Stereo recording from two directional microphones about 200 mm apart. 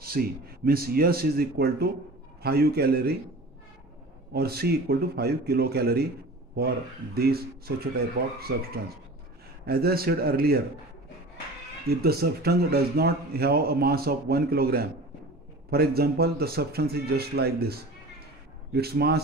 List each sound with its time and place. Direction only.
0.0 s a man's voice: 50° right (ahead or behind)
4.3 s a man's voice: 50° right (ahead or behind)
7.2 s a man's voice: 50° right (ahead or behind)
11.9 s a man's voice: 50° right (ahead or behind)